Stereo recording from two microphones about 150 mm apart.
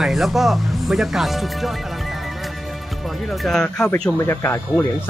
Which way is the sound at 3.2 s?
Centre (ahead or behind).